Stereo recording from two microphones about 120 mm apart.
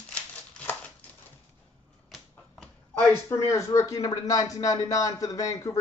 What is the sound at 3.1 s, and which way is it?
Speech, 25° left (ahead or behind).